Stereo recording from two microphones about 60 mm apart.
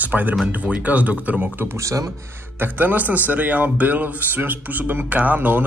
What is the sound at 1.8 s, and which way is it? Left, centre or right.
Speech, right.